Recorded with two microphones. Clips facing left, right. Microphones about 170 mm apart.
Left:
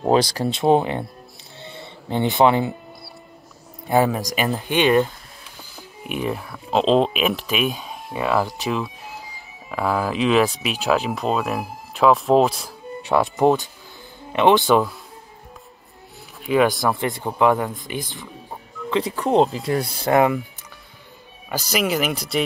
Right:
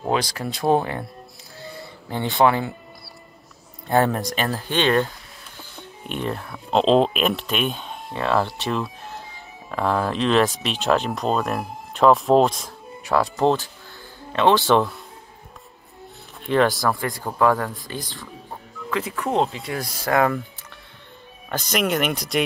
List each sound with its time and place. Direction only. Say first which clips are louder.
0.1 s speech: left 6 dB; 35° left (ahead or behind); by 1.0 s 20° left (ahead or behind)
1.6 s a sound: right 1 dB; 25° left (ahead or behind)
3.8 s speech: left 1 dB; 5° left (ahead or behind)
4.5 s speech: left 4 dB; 15° left (ahead or behind)
13.4 s speech: left 2 dB; 15° left (ahead or behind)
16.4 s speech: left 1 dB; 5° left (ahead or behind)
16.8 s speech: left 2 dB; 25° left (ahead or behind)
18.9 s speech: left 4 dB; 30° left (ahead or behind)
20.0 s speech: left 2 dB; 20° left (ahead or behind)
21.5 s speech: even; 5° left (ahead or behind)